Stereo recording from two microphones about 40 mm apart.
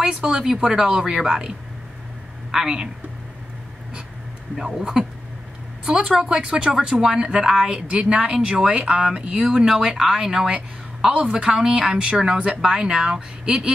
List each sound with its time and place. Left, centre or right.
0.0 s speech: centre
2.5 s speech: centre
4.6 s speech: centre
5.9 s speech: right
7.9 s speech: right
9.5 s speech: centre
11.1 s speech: right